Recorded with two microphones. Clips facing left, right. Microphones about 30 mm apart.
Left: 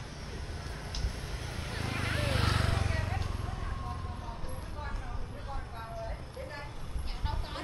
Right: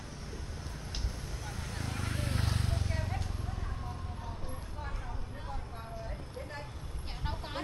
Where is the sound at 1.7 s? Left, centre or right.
Left.